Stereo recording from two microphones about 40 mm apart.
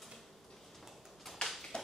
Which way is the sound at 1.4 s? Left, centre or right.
Centre.